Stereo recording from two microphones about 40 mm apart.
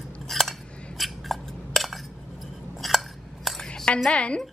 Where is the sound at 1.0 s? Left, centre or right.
Centre.